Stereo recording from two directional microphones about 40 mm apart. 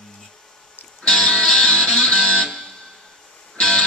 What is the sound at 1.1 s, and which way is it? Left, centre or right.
Music, centre.